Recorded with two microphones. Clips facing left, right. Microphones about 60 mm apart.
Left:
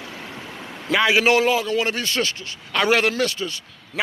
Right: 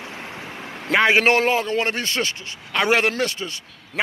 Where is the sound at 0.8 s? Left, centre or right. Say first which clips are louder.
Right 1 dB; right.